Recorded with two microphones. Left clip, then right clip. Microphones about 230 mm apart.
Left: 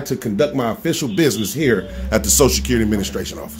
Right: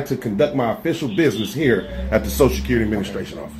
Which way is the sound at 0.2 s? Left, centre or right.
Left.